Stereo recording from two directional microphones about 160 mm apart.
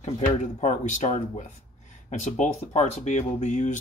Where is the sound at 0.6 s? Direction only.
50° left (ahead or behind).